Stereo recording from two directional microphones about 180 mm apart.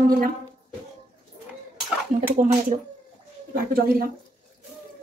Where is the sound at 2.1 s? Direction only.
40° right (ahead or behind).